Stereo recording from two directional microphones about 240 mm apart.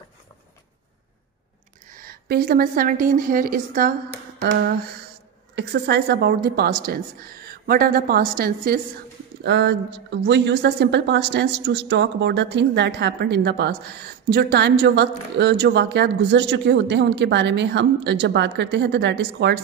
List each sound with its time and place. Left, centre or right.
1.9 s a woman's voice: right